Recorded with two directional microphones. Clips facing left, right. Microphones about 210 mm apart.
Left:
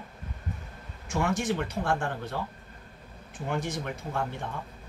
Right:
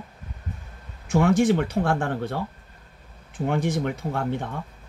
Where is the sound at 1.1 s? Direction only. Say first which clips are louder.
Right 9 dB; 60° right (ahead or behind).